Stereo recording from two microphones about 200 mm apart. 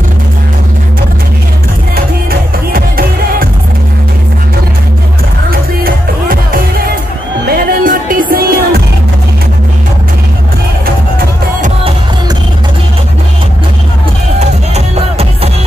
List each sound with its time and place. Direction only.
2.7 s music: 45° right (ahead or behind)
5.5 s music: 45° right (ahead or behind)
14.7 s music: 30° right (ahead or behind)